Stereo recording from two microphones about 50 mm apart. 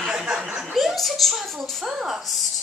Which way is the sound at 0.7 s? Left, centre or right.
Centre.